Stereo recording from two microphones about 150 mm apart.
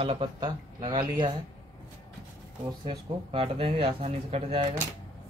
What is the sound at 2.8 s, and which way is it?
Speech, 35° right (ahead or behind).